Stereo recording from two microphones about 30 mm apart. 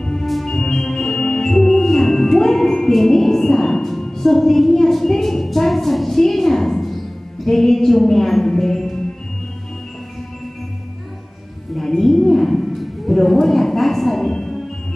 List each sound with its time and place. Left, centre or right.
0.0 s music: centre
0.3 s music: centre
7.4 s speech: centre
12.0 s a sound: centre
14.3 s music: centre